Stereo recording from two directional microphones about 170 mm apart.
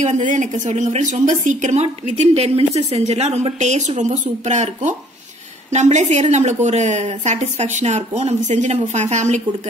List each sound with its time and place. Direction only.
0.0 s a woman's voice: 45° right (ahead or behind)